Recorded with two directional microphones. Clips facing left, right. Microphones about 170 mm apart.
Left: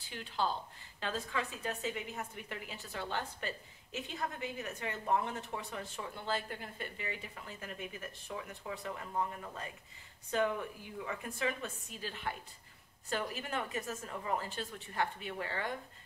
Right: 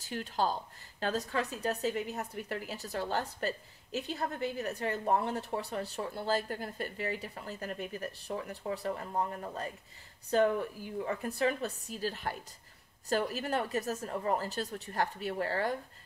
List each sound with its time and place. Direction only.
0.0 s a woman's voice: 45° right (ahead or behind)